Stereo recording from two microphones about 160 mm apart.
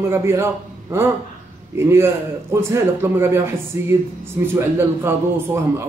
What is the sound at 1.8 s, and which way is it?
A man's voice, 15° right (ahead or behind).